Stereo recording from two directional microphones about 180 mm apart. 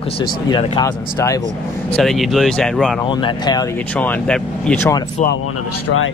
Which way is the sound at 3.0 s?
25° left (ahead or behind).